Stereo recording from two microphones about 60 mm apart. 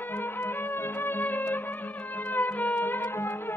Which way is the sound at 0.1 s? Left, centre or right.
Left.